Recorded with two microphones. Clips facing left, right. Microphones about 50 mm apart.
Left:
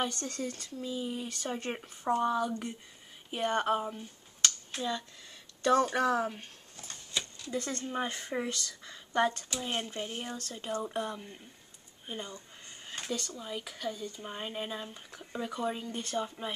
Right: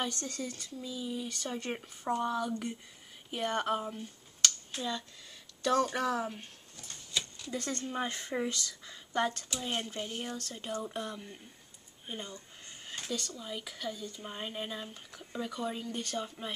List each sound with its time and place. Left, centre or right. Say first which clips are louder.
0.0 s speech: left 2 dB; centre
0.7 s speech: left 2 dB; left
1.4 s speech: left 1 dB; centre
6.9 s a sound: even; left
7.5 s speech: left 1 dB; centre
12.1 s a sound: left 1 dB; centre
13.3 s speech: left 2 dB; centre